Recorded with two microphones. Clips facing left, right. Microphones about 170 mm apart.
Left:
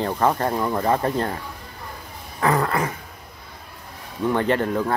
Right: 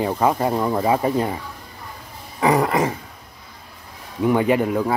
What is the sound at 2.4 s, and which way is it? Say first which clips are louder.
Dog: right 3 dB; 15° right (ahead or behind).